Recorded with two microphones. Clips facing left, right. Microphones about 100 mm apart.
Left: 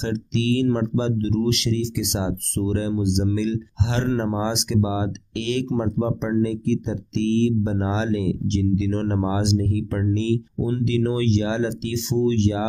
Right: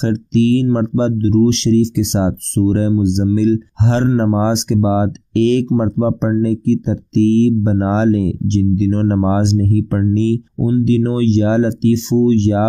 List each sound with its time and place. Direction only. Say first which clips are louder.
0.0 s speech: right 10 dB; 35° right (ahead or behind)